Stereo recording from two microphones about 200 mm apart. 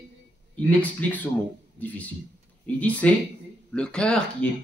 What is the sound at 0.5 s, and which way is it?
Speech, 5° left (ahead or behind).